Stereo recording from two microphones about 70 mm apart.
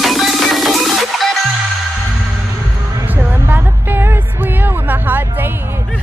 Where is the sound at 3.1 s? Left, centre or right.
Right.